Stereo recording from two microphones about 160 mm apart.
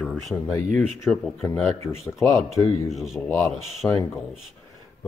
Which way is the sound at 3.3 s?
15° left (ahead or behind).